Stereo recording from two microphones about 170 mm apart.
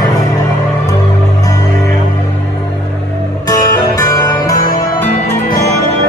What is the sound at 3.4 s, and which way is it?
Music, 20° left (ahead or behind).